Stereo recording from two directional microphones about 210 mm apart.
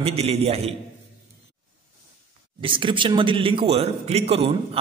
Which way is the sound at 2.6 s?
25° right (ahead or behind).